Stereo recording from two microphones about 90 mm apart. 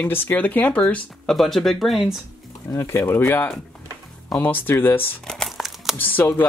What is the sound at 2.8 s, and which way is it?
Speech, 30° left (ahead or behind).